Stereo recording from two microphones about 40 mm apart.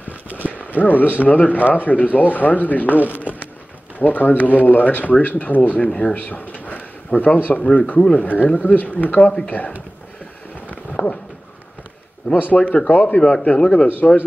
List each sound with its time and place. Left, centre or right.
0.7 s speech: left
3.2 s speech: right
4.0 s speech: left
5.9 s a man's voice: left
6.1 s a sound: left
7.4 s speech: left
8.5 s speech: left
11.0 s a sound: left
12.4 s speech: left
13.0 s a man's voice: left
13.8 s speech: left